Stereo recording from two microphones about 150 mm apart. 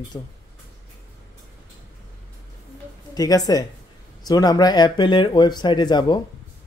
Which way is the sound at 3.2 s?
25° left (ahead or behind).